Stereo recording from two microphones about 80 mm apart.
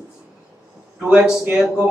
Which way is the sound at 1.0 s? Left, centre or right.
Centre.